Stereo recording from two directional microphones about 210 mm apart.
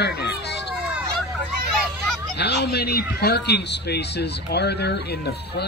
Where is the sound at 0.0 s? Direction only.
50° left (ahead or behind).